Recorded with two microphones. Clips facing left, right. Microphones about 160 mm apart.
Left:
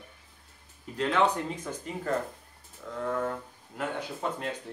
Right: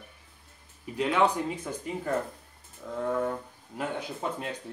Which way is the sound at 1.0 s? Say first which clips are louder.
Right 1 dB; 10° right (ahead or behind).